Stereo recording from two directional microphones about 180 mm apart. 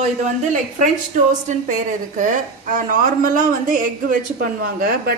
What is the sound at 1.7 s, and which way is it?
A woman's voice, 45° right (ahead or behind).